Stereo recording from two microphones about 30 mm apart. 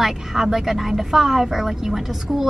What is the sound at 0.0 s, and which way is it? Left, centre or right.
Speech, centre.